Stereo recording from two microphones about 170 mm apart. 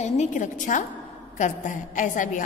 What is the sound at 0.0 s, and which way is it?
A woman's voice, 45° left (ahead or behind).